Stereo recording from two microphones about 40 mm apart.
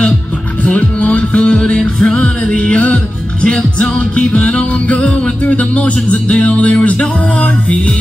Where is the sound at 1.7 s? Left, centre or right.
Left.